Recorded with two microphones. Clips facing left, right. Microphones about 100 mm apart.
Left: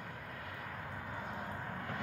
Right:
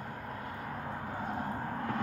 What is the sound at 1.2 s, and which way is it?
Vehicle, 45° right (ahead or behind).